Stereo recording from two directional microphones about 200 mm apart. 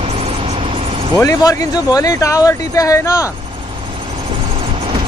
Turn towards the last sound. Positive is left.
turn(degrees=15)  # may be behind; listen again after turning